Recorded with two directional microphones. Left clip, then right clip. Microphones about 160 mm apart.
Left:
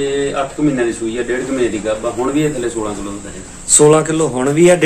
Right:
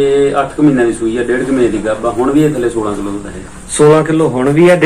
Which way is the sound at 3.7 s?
15° left (ahead or behind).